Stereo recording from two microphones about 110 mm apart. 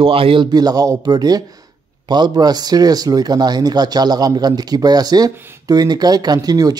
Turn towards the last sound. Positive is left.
turn(degrees=-35)  # may be behind; listen again after turning